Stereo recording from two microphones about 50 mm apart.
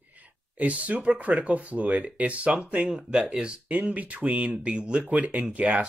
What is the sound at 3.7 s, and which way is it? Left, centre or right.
Speech, right.